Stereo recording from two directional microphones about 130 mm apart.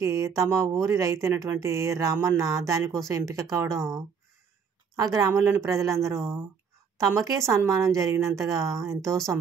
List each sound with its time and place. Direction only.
0.0 s speech: 25° right (ahead or behind)